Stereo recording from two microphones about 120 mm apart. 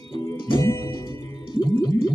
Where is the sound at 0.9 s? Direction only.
40° left (ahead or behind).